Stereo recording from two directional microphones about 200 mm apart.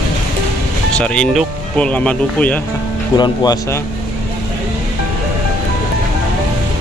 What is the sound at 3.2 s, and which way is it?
Speech, 20° left (ahead or behind).